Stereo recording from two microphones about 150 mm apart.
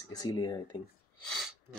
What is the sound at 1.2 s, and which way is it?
Speech, centre (ahead or behind).